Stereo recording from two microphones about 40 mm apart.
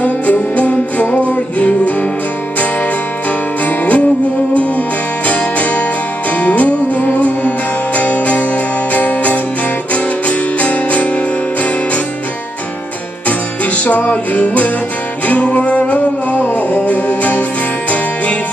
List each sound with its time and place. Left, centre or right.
0.0 s music: left
3.6 s music: left
5.2 s music: left
13.7 s music: left